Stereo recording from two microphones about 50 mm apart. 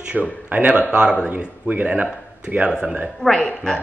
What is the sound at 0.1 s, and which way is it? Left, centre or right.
Speech, right.